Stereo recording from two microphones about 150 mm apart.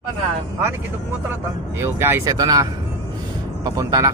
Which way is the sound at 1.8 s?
15° right (ahead or behind).